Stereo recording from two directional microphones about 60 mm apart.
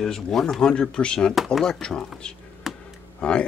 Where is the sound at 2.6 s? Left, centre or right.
Centre.